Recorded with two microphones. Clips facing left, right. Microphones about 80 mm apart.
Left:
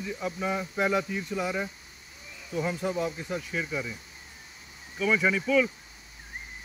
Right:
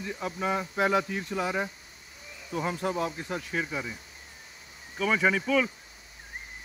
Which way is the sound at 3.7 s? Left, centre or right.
Right.